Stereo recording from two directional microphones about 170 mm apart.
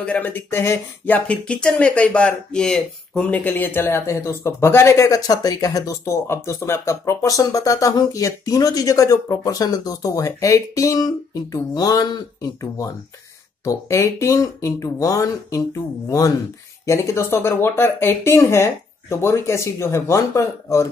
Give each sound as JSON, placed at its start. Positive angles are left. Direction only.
{"t": 0.0, "sound": "speech", "side_deg": 10}